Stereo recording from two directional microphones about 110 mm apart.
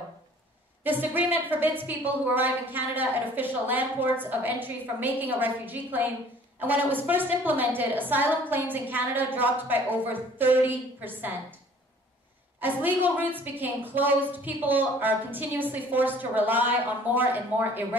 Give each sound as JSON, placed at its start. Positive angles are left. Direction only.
{"t": 0.8, "sound": "a woman's voice", "side_deg": -15}
{"t": 12.5, "sound": "a woman's voice", "side_deg": -15}